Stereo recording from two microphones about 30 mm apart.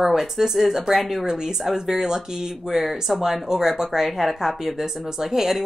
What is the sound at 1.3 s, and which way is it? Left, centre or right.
Speech, centre.